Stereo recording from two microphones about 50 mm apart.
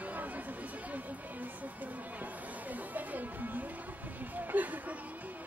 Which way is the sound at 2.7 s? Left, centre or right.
Right.